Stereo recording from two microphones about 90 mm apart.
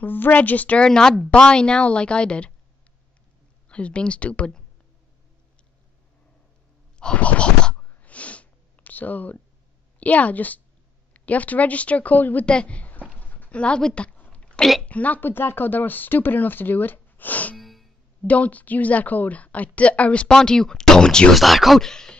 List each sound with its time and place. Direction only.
0.0 s a woman's voice: 20° left (ahead or behind)
3.6 s speech: 15° left (ahead or behind)
7.0 s a sound: 10° left (ahead or behind)
9.9 s a woman's voice: 15° left (ahead or behind)
13.2 s a sound: 20° left (ahead or behind)
14.9 s speech: 15° left (ahead or behind)
17.6 s music: centre (ahead or behind)
18.2 s a woman's voice: 15° left (ahead or behind)